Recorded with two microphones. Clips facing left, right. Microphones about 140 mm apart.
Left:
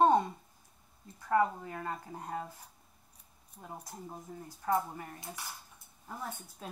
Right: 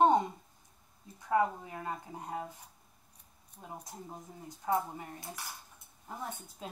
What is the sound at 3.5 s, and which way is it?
A woman's voice, 5° right (ahead or behind).